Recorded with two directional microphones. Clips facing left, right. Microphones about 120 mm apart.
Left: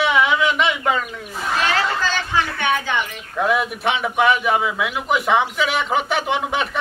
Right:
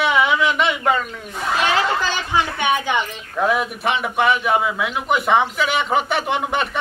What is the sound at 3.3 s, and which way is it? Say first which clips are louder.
A man's voice: even; centre (ahead or behind).